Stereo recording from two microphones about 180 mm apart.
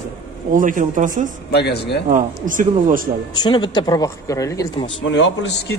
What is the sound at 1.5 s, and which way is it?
Speech, 65° left (ahead or behind).